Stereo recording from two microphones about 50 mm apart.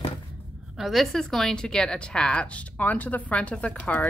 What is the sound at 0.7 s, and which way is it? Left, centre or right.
A woman's voice, centre.